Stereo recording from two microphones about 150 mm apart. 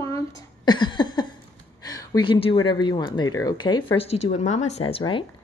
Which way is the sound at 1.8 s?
25° left (ahead or behind).